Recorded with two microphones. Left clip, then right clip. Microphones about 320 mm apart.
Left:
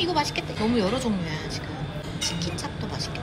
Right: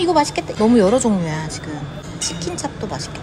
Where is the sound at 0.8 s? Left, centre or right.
Right.